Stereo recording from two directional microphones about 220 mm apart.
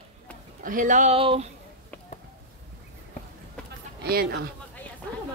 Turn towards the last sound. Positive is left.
turn(degrees=-45)  # may be behind; listen again after turning